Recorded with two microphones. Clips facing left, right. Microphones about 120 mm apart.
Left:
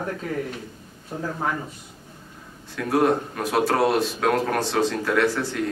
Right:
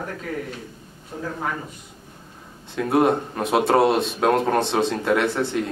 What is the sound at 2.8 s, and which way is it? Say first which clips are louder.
Speech: right 2 dB; 25° right (ahead or behind).